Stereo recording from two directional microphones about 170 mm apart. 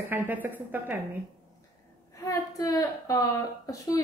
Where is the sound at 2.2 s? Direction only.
20° left (ahead or behind).